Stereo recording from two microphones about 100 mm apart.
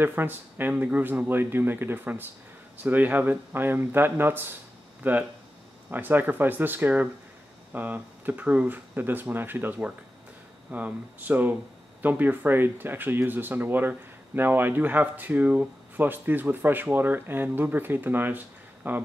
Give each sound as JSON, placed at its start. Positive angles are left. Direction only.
{"t": 0.0, "sound": "speech", "side_deg": -20}